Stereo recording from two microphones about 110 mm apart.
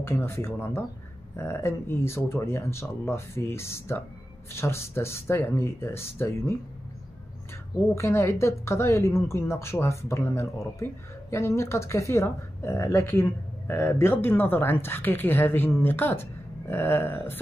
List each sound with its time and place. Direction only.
0.0 s speech: 20° left (ahead or behind)
7.9 s speech: 25° left (ahead or behind)